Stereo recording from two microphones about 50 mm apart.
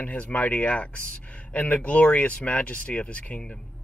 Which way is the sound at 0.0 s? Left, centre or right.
Left.